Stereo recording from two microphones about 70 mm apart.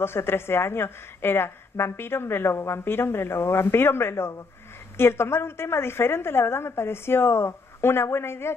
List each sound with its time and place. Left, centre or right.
0.0 s a woman's voice: left